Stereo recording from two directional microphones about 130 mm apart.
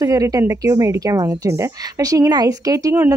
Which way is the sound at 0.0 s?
25° right (ahead or behind).